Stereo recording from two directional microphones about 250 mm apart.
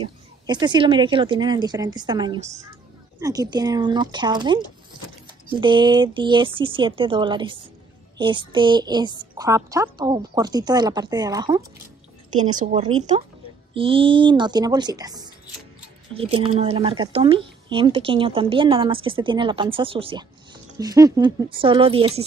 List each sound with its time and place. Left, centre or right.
0.0 s a child's voice: centre
5.6 s a child's voice: centre
12.4 s a child's voice: right